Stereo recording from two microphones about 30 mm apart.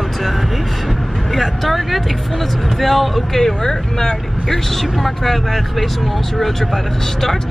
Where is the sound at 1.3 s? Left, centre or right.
Centre.